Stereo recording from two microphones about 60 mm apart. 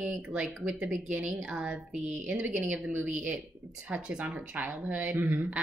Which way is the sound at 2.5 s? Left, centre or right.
Right.